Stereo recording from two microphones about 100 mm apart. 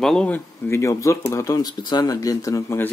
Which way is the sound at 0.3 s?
25° left (ahead or behind).